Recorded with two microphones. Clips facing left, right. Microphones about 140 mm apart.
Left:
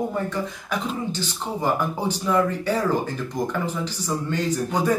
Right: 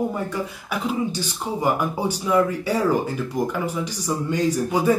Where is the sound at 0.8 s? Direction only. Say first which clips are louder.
Right 3 dB; 10° right (ahead or behind).